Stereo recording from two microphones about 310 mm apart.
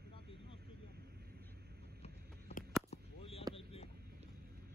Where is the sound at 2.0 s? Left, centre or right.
Left.